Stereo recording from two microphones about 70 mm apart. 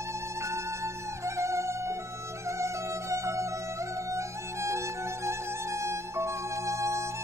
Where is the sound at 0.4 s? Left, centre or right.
Right.